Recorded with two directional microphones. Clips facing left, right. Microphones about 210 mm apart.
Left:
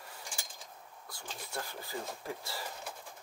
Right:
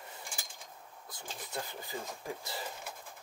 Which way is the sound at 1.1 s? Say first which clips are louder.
Right 1 dB; 20° right (ahead or behind).